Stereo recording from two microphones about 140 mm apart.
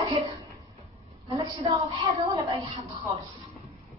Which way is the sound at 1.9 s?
35° right (ahead or behind).